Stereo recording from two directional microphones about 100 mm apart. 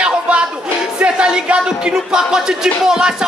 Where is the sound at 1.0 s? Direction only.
10° right (ahead or behind).